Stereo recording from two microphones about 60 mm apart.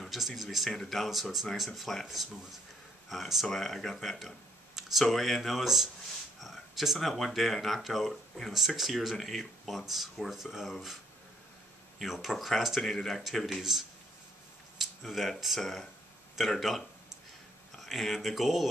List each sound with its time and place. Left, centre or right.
0.0 s speech: centre
3.1 s speech: centre
12.0 s speech: centre